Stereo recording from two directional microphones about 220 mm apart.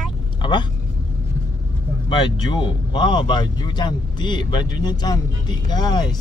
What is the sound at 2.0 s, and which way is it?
Speech, 20° left (ahead or behind).